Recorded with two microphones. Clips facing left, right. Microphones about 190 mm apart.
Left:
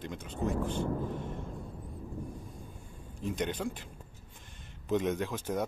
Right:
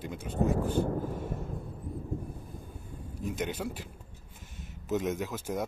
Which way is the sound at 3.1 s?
10° right (ahead or behind).